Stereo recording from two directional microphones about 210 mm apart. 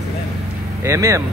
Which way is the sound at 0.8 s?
15° right (ahead or behind).